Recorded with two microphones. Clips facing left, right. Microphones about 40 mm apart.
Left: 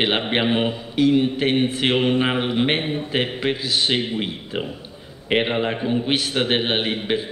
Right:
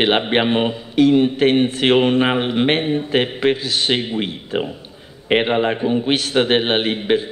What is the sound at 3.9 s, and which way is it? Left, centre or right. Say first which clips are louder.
A man's voice: right 2 dB; centre.